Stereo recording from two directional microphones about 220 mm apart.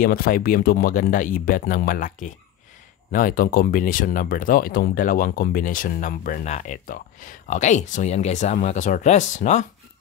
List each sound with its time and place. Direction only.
0.0 s speech: 40° left (ahead or behind)